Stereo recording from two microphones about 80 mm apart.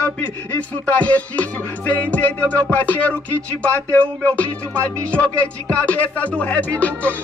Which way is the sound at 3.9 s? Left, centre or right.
Centre.